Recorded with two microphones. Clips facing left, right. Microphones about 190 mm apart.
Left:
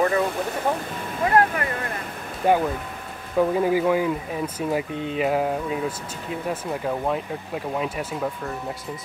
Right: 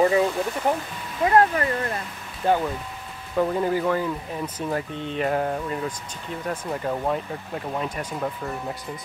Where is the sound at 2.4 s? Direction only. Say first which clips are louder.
Left 2 dB; 15° left (ahead or behind).